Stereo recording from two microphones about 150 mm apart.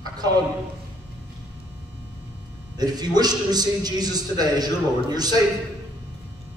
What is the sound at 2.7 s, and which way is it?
A man's voice, 25° right (ahead or behind).